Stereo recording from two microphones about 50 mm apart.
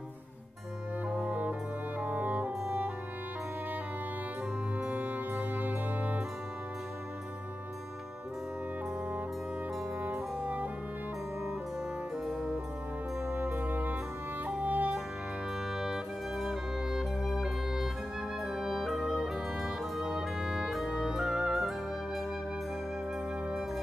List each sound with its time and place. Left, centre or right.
2.0 s music: right
4.7 s music: right
10.4 s brass instrument: right
13.3 s music: right
15.7 s music: centre